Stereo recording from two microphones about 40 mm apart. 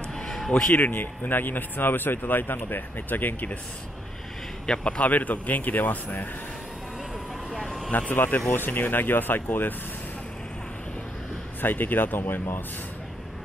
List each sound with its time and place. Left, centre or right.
0.7 s speech: left
4.6 s speech: left
7.5 s vehicle: centre
8.1 s speech: left
11.6 s speech: left